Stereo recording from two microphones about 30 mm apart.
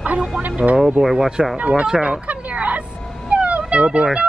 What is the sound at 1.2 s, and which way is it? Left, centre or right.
Speech, right.